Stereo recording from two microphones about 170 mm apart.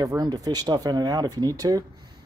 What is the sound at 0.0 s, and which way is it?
Speech, 20° right (ahead or behind).